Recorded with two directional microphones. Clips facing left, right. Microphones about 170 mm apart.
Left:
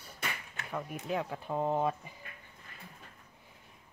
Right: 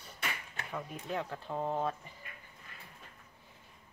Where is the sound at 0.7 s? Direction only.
5° left (ahead or behind).